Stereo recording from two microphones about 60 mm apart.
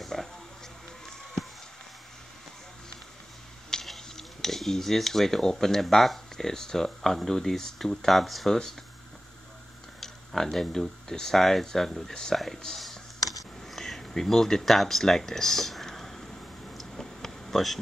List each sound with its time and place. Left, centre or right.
0.0 s music: centre
3.7 s speech: centre
9.9 s speech: centre
13.2 s a sound: left
13.7 s speech: centre
16.7 s a sound: centre